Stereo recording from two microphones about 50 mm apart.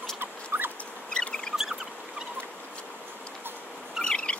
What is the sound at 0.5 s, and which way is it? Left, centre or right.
Rodents, right.